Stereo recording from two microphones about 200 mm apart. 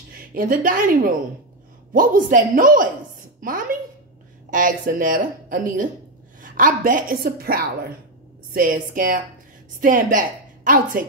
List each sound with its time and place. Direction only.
0.3 s a woman's voice: 45° right (ahead or behind)
3.3 s a sound: 45° right (ahead or behind)
4.5 s a woman's voice: 40° right (ahead or behind)